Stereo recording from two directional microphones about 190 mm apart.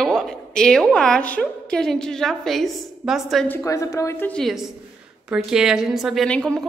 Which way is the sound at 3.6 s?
15° left (ahead or behind).